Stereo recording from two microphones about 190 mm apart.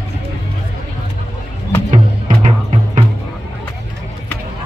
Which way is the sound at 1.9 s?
40° right (ahead or behind).